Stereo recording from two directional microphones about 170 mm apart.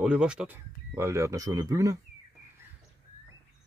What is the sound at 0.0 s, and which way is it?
Speech, 5° right (ahead or behind).